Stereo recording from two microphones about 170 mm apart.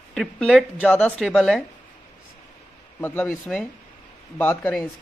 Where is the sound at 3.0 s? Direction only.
10° left (ahead or behind).